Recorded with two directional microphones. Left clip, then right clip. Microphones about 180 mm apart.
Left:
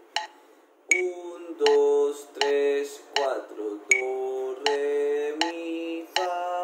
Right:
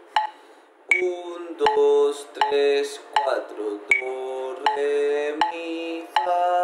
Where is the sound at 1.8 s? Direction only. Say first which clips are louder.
Right 6 dB; 35° right (ahead or behind).